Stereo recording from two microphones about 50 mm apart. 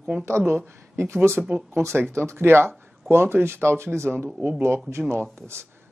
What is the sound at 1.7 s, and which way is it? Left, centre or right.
Speech, right.